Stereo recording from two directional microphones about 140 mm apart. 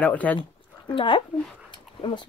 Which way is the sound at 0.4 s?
35° left (ahead or behind).